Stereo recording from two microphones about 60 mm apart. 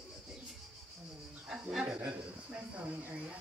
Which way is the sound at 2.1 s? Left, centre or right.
Right.